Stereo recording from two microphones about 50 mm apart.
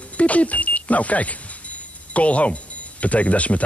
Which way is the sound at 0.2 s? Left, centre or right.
Left.